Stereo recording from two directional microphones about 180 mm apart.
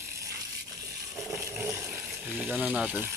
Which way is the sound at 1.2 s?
15° right (ahead or behind).